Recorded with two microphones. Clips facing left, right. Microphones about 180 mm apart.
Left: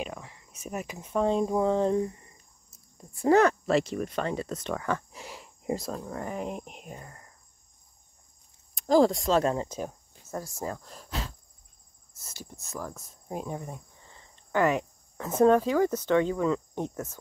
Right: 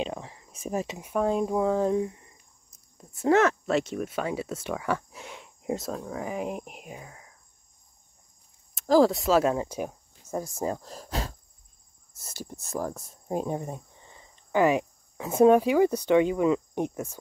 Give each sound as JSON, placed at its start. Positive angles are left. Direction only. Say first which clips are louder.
{"t": 0.0, "sound": "a sound", "louder": "right 4 dB", "side_deg": -30}
{"t": 0.9, "sound": "speech", "louder": "left 2 dB", "side_deg": -10}
{"t": 8.7, "sound": "speech", "louder": "right 1 dB", "side_deg": 0}
{"t": 10.8, "sound": "speech", "louder": "right 4 dB", "side_deg": -35}
{"t": 12.4, "sound": "speech", "louder": "right 6 dB", "side_deg": -40}